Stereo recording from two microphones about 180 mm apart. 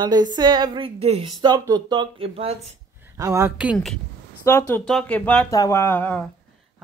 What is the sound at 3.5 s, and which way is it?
Speech, 5° right (ahead or behind).